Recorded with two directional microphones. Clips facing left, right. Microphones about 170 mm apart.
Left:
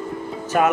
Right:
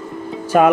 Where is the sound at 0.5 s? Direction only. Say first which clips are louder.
Right 6 dB; 25° right (ahead or behind).